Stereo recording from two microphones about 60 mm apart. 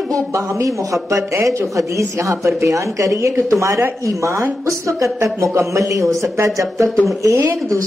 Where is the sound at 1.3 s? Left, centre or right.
Right.